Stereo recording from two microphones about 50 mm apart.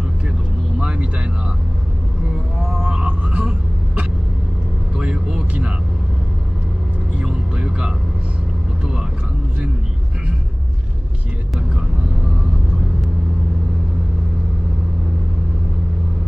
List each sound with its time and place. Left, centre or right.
0.7 s vehicle: centre
2.6 s vehicle: centre
7.2 s music: right